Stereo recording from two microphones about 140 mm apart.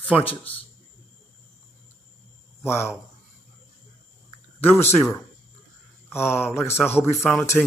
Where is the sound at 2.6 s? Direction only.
15° left (ahead or behind).